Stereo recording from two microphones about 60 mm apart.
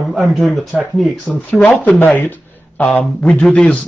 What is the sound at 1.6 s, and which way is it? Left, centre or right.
A man's voice, left.